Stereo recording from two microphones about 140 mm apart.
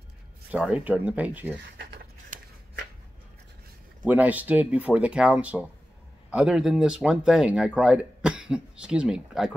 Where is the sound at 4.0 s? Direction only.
10° right (ahead or behind).